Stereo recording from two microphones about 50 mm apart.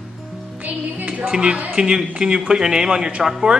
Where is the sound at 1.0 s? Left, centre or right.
Right; by 3.4 s centre.